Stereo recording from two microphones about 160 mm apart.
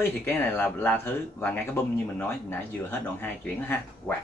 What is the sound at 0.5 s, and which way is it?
Speech, 10° left (ahead or behind).